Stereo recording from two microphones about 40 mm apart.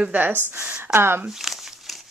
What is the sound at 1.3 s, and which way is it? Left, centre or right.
Crumpling, centre.